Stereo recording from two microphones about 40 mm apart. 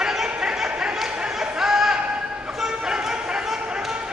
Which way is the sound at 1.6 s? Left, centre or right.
Centre.